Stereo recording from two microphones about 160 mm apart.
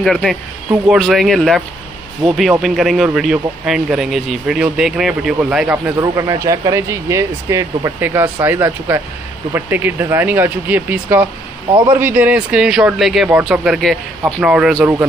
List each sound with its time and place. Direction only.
0.0 s speech: centre (ahead or behind)
5.9 s speech: 20° right (ahead or behind); by 14.9 s centre (ahead or behind)